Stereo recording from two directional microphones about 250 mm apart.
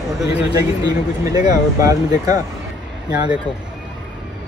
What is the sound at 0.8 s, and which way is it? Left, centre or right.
Speech, centre.